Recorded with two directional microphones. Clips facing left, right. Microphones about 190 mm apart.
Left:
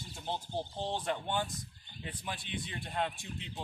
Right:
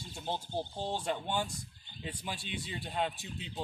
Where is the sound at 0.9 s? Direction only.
10° right (ahead or behind).